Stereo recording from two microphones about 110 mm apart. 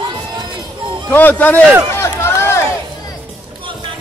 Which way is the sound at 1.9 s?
20° left (ahead or behind).